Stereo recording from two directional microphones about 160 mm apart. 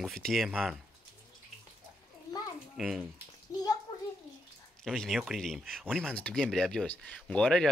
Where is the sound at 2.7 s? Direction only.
5° right (ahead or behind).